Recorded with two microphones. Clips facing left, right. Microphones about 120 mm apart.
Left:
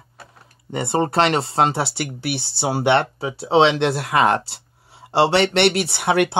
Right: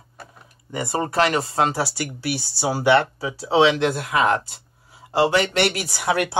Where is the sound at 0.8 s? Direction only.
25° left (ahead or behind).